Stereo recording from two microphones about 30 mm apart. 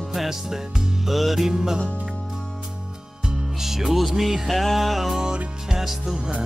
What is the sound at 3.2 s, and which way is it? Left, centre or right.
Music, right.